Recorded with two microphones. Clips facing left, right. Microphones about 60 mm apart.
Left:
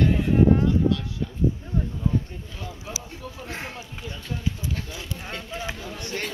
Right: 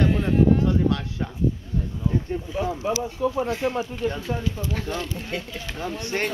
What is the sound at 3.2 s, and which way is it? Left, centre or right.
Speech, right.